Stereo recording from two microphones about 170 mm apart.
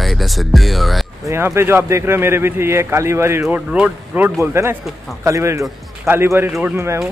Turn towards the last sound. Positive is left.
turn(degrees=-15)  # may be behind; listen again after turning